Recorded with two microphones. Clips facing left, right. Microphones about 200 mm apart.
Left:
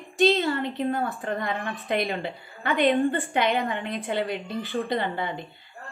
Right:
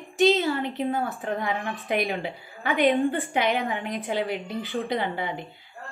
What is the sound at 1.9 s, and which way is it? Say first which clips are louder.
A woman's voice: even; 10° right (ahead or behind).